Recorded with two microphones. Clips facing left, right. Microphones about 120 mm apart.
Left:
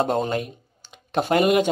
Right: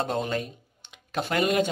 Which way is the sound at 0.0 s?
45° left (ahead or behind).